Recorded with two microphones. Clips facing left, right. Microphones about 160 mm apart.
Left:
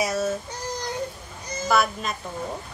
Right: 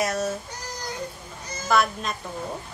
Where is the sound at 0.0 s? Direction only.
Centre (ahead or behind).